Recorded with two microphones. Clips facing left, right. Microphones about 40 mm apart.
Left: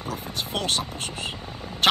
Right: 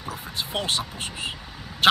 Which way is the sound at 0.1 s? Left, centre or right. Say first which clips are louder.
Even; right.